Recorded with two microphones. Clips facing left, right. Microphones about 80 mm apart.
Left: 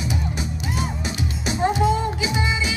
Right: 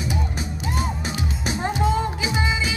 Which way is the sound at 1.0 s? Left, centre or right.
Right.